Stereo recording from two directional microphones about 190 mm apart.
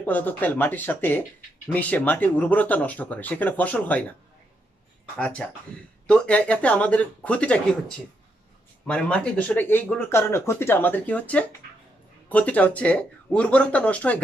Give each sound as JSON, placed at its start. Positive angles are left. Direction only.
{"t": 0.0, "sound": "speech", "side_deg": 10}
{"t": 5.1, "sound": "speech", "side_deg": 5}
{"t": 8.8, "sound": "speech", "side_deg": 5}